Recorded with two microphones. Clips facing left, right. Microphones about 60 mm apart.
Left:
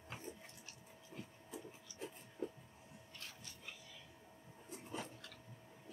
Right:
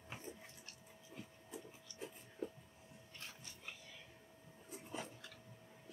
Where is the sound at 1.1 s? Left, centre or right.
Centre.